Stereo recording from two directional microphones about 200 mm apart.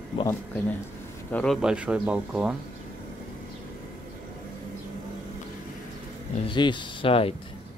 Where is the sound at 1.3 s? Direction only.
5° left (ahead or behind).